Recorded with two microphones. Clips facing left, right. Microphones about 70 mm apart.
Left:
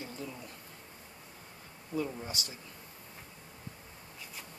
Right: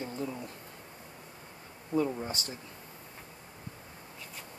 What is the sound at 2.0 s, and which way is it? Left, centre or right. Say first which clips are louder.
Speech: right 6 dB; right.